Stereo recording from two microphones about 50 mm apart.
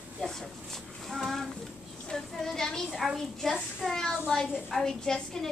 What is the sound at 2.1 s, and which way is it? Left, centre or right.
Child singing, centre.